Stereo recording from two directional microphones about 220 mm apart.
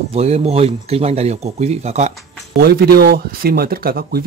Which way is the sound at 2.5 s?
45° right (ahead or behind).